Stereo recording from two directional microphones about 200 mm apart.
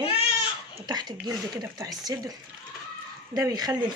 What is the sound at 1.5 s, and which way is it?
Speech, 20° right (ahead or behind).